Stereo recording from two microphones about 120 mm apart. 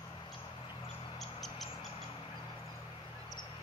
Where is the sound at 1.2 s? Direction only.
Centre (ahead or behind).